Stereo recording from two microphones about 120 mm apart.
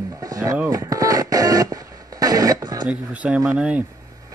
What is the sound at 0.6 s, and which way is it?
Radio, 30° right (ahead or behind).